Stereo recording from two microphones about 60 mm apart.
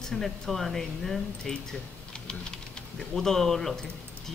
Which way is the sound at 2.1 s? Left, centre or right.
Centre.